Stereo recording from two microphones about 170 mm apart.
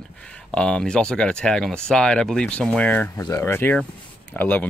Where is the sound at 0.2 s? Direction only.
5° left (ahead or behind).